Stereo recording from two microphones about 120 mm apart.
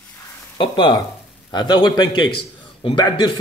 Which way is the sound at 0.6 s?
45° left (ahead or behind).